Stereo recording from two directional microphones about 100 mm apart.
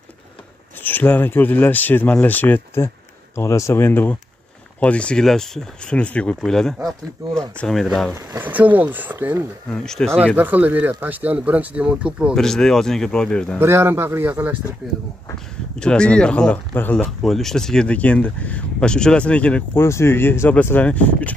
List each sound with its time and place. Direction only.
0.8 s speech: 15° left (ahead or behind); by 8.1 s centre (ahead or behind)
8.1 s speech: 25° right (ahead or behind)
9.8 s speech: 5° left (ahead or behind)
10.2 s speech: 15° right (ahead or behind)
12.4 s speech: 5° left (ahead or behind)
13.6 s speech: 25° right (ahead or behind)
15.8 s speech: 10° left (ahead or behind)
19.8 s speech: 25° left (ahead or behind)